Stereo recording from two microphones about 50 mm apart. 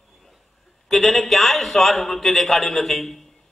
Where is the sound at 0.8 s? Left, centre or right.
Centre.